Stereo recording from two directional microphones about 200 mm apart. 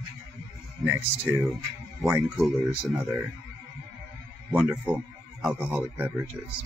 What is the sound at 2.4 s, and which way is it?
Speech, centre (ahead or behind).